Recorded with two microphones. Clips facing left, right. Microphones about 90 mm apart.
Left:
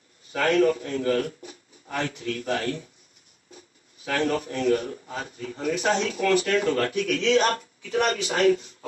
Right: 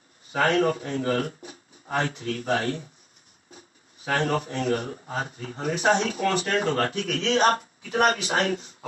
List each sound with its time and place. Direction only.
0.3 s speech: 35° right (ahead or behind)